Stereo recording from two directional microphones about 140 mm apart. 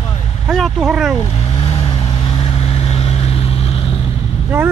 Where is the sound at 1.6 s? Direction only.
35° left (ahead or behind).